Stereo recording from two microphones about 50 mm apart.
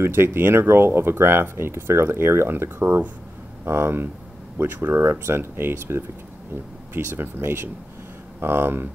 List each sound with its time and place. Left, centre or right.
0.0 s speech: right
7.2 s speech: right